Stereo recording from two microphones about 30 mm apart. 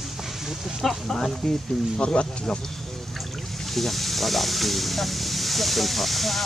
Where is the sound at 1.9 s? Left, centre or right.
Left.